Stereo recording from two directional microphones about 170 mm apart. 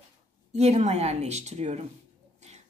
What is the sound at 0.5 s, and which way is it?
A woman's voice, 40° right (ahead or behind).